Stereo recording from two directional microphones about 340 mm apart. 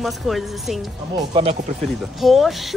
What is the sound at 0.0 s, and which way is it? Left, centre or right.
Speech, centre.